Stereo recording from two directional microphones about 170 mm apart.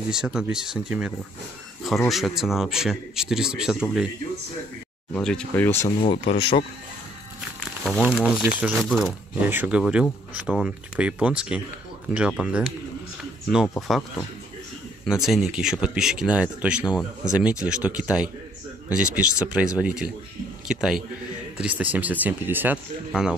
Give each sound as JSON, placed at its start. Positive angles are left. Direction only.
{"t": 0.1, "sound": "speech", "side_deg": -5}
{"t": 5.1, "sound": "speech", "side_deg": 5}
{"t": 5.9, "sound": "speech", "side_deg": 30}
{"t": 7.8, "sound": "speech", "side_deg": 0}
{"t": 8.8, "sound": "speech", "side_deg": 0}
{"t": 9.5, "sound": "speech", "side_deg": -10}
{"t": 15.2, "sound": "speech", "side_deg": 0}